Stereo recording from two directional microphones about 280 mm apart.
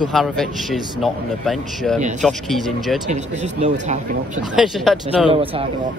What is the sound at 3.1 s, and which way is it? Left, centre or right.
Speech, right.